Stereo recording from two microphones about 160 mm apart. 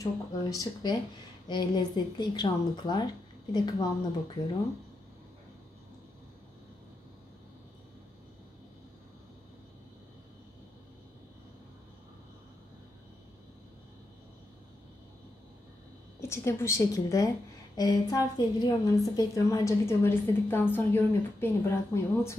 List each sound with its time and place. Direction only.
0.0 s speech: 20° left (ahead or behind)
16.2 s a woman's voice: 15° left (ahead or behind)